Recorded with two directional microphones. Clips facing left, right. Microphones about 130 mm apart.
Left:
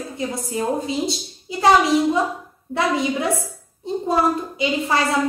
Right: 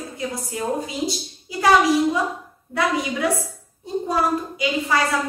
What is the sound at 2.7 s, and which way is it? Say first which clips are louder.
A woman's voice: left 2 dB; 25° left (ahead or behind).